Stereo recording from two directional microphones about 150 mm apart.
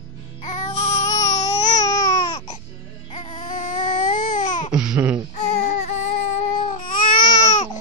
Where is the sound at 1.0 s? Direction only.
25° left (ahead or behind).